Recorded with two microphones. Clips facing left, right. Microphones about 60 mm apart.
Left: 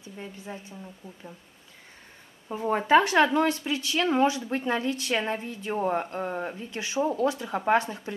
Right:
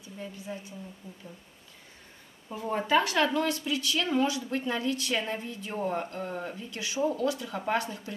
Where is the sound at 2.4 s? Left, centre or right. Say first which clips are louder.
Left 4 dB; left.